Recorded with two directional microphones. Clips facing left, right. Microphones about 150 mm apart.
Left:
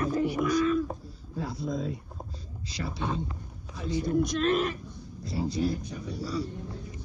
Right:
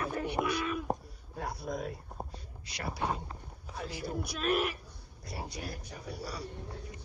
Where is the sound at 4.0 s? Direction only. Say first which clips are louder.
Left 12 dB; 10° right (ahead or behind).